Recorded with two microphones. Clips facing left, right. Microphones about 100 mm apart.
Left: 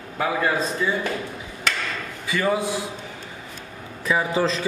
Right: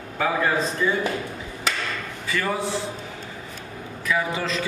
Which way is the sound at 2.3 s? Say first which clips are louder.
Left 3 dB; 15° left (ahead or behind).